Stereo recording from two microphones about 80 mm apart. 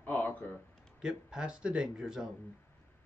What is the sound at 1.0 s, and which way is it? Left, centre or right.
Speech, centre.